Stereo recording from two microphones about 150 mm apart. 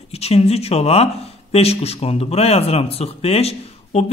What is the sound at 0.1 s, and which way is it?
Speech, 45° left (ahead or behind).